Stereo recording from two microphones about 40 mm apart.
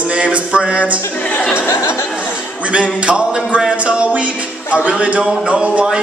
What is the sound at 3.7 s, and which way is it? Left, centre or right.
Music, right.